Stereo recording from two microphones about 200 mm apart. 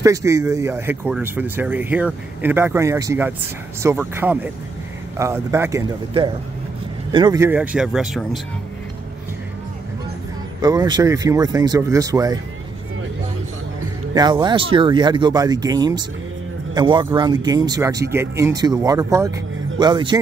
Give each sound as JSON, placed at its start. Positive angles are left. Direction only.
{"t": 0.0, "sound": "speech", "side_deg": -15}
{"t": 7.1, "sound": "speech", "side_deg": -20}
{"t": 10.6, "sound": "speech", "side_deg": -20}
{"t": 14.1, "sound": "speech", "side_deg": -20}